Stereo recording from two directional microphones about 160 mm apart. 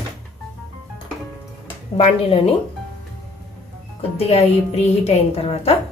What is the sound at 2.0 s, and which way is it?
Speech, 35° left (ahead or behind).